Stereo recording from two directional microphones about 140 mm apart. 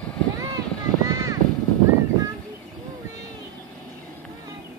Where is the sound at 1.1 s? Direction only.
25° right (ahead or behind).